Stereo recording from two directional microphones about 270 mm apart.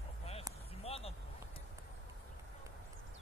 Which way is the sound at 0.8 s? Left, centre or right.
Left.